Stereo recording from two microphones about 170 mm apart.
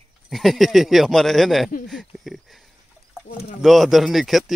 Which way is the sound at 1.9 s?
Centre (ahead or behind).